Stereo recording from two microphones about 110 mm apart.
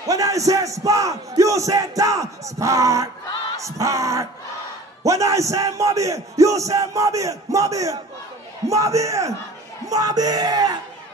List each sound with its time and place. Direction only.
0.0 s battle cry: 30° right (ahead or behind)
9.8 s yell: 35° right (ahead or behind)